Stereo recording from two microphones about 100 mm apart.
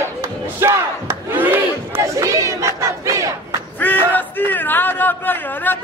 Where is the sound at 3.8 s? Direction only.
15° left (ahead or behind).